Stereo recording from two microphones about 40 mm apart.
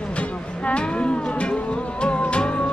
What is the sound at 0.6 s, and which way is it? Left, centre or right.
Music, left.